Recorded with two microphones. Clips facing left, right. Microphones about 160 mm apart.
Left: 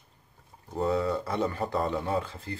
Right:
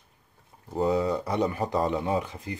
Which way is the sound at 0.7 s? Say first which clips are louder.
Right 2 dB; 15° right (ahead or behind).